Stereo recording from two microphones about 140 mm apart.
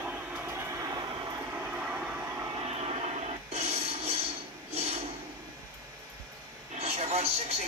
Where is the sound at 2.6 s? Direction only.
45° right (ahead or behind).